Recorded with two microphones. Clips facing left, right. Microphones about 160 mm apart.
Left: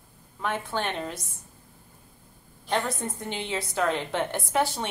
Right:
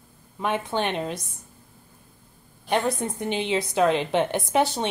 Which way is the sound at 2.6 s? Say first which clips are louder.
Right 4 dB; 15° right (ahead or behind).